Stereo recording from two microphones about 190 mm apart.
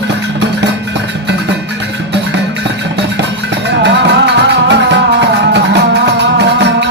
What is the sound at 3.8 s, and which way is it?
Music, 65° right (ahead or behind).